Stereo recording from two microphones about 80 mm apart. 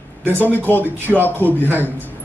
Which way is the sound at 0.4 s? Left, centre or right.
Left.